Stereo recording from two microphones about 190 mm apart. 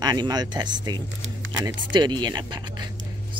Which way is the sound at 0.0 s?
20° right (ahead or behind).